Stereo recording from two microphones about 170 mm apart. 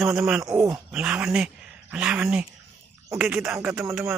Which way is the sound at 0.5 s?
20° right (ahead or behind).